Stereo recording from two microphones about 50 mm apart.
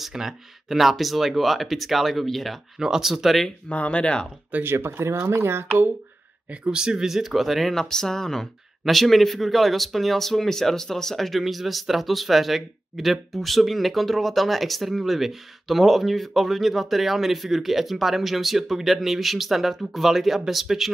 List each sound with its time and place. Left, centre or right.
0.0 s speech: centre
2.8 s speech: centre
3.7 s speech: left
4.6 s speech: right
6.5 s speech: right
6.8 s speech: centre